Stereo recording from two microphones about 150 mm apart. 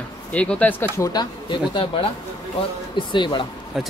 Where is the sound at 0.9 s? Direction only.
25° left (ahead or behind).